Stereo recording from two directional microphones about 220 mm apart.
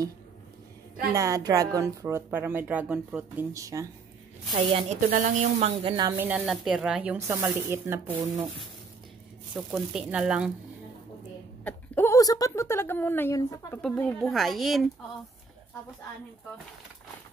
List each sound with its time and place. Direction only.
1.1 s a woman's voice: 15° right (ahead or behind)
4.6 s a woman's voice: 25° right (ahead or behind)
5.0 s a woman's voice: 40° right (ahead or behind); by 8.5 s 10° right (ahead or behind)
9.6 s speech: 5° right (ahead or behind)
11.6 s a woman's voice: 10° left (ahead or behind)